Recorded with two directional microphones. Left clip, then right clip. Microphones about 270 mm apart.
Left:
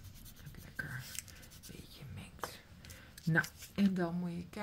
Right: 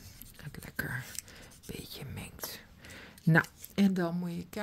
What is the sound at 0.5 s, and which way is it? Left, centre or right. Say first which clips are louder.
Whispering: right 7 dB; right.